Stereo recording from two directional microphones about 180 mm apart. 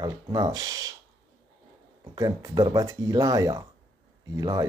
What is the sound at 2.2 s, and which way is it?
Speech, 20° right (ahead or behind).